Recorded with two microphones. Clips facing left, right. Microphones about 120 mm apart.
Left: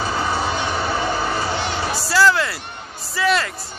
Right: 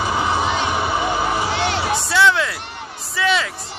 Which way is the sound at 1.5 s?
85° right.